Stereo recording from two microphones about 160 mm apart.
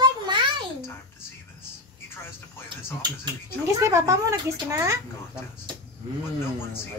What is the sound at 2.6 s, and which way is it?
Speech, 30° right (ahead or behind).